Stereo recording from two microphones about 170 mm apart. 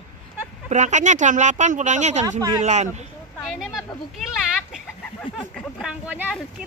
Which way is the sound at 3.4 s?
Centre (ahead or behind).